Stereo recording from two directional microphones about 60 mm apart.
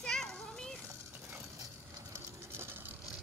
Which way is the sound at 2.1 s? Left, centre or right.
Right.